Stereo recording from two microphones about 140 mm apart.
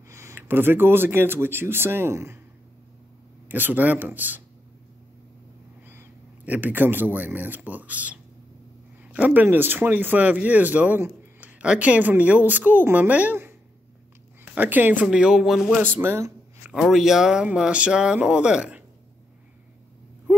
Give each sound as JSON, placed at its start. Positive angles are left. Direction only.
{"t": 0.1, "sound": "speech", "side_deg": -20}
{"t": 3.4, "sound": "speech", "side_deg": -15}
{"t": 5.9, "sound": "speech", "side_deg": -15}
{"t": 15.8, "sound": "speech", "side_deg": -15}
{"t": 16.7, "sound": "speech", "side_deg": 0}